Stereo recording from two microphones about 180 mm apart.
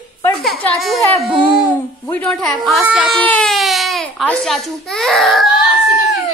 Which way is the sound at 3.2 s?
5° left (ahead or behind).